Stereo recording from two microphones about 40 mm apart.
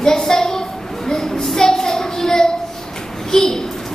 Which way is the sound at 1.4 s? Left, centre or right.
Centre.